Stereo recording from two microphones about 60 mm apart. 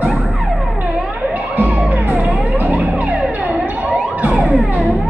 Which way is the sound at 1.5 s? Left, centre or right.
Right.